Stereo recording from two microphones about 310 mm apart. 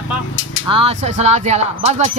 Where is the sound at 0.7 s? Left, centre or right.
Centre.